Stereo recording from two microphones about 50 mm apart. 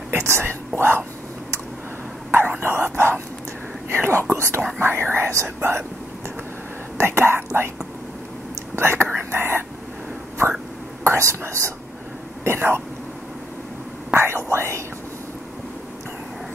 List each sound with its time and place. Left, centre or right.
0.1 s speech: right
2.6 s speech: right
4.7 s speech: right
7.0 s speech: right
8.7 s whispering: right
11.1 s speech: right
12.4 s speech: right
14.1 s whispering: right